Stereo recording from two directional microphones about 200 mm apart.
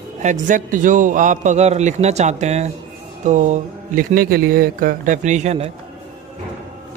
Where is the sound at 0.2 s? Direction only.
40° right (ahead or behind).